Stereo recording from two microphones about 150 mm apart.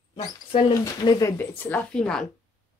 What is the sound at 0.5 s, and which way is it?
Speech, 45° left (ahead or behind).